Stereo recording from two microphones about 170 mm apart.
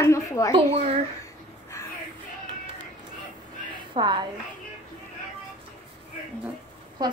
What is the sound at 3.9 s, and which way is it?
Speech, 25° right (ahead or behind).